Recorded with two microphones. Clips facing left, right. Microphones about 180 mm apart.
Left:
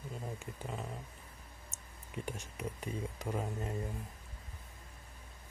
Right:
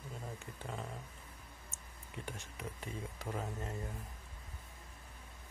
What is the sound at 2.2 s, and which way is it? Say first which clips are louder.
Speech: left 4 dB; 15° left (ahead or behind).